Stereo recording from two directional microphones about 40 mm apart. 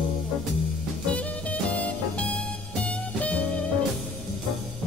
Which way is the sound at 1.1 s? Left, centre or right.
Left.